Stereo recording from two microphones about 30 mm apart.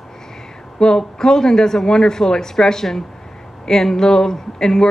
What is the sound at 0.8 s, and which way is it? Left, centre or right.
A woman's voice, left.